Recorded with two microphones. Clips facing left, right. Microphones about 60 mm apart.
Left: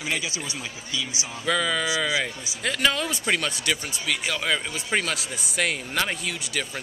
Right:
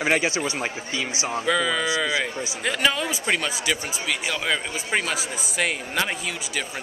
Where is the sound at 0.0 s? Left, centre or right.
Right.